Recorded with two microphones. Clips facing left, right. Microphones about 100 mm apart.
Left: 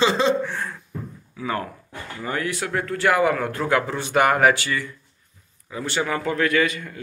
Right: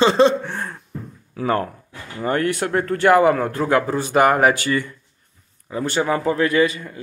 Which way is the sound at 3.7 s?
40° right (ahead or behind).